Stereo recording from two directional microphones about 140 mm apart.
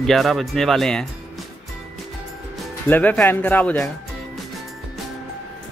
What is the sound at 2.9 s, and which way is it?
Speech, 10° left (ahead or behind).